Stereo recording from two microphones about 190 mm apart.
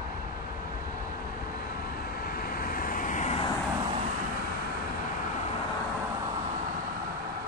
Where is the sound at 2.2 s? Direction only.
50° left (ahead or behind).